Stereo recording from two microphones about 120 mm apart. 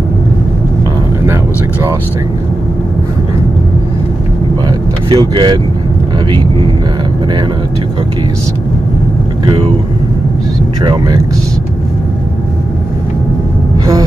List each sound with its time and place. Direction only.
1.2 s vehicle: 20° right (ahead or behind)
4.6 s vehicle: 35° right (ahead or behind)
9.5 s speech: 50° right (ahead or behind)
10.8 s speech: 40° right (ahead or behind)